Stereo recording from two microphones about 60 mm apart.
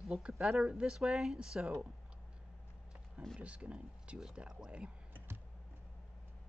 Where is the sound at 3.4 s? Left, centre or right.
Right.